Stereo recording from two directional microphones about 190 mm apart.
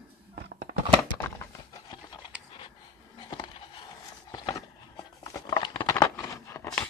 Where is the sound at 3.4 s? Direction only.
25° left (ahead or behind).